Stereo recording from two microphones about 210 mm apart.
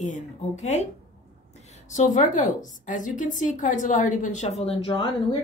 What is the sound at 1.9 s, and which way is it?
A woman's voice, 35° left (ahead or behind).